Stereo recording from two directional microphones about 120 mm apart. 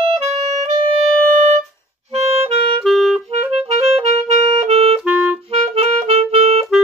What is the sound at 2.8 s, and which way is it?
Clarinet, centre (ahead or behind).